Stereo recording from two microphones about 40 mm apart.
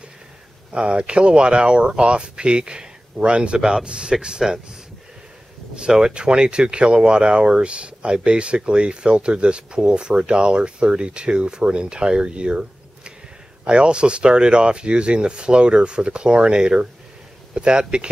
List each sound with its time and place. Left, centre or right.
0.7 s speech: right
5.8 s speech: centre